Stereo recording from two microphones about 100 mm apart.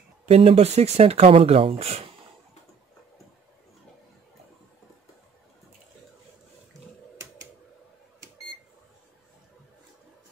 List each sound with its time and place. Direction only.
0.3 s speech: 85° right